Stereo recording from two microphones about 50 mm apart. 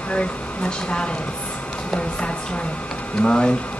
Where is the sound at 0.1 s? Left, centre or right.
Left.